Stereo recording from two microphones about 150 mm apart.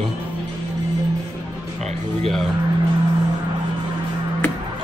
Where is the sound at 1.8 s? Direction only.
45° right (ahead or behind).